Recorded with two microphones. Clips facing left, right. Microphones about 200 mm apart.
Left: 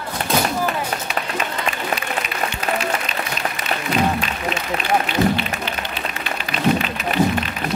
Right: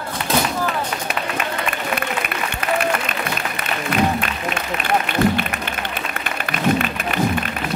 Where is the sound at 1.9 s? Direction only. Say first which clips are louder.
Right 1 dB; 55° right (ahead or behind).